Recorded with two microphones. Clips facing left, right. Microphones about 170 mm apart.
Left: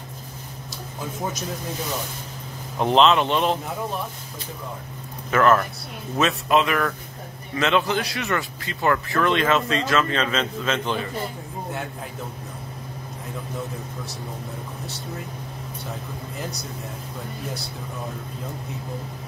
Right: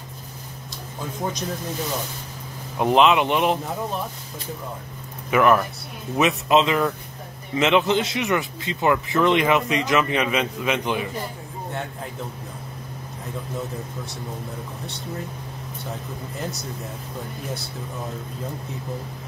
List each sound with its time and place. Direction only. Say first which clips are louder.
2.8 s speech: even; 10° right (ahead or behind)
5.3 s speech: right 1 dB; 15° right (ahead or behind)